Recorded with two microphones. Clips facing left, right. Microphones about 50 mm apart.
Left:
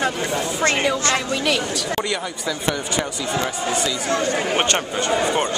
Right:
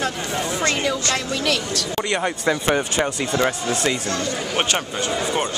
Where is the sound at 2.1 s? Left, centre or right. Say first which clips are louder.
Right 5 dB; right.